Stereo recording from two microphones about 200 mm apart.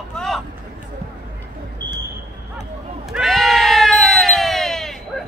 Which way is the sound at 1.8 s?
20° right (ahead or behind).